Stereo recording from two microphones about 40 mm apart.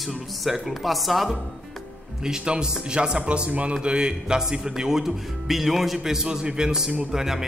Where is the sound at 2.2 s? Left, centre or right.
Right.